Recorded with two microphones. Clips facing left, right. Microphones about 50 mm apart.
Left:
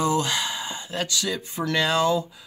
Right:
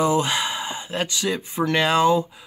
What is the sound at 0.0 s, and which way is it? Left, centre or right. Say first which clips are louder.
Speech: right 3 dB; right.